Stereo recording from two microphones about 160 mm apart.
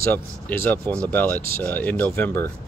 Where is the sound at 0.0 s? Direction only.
10° left (ahead or behind).